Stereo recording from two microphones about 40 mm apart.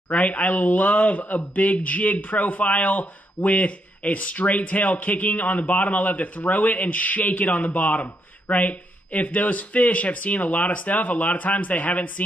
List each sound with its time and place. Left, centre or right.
0.1 s speech: left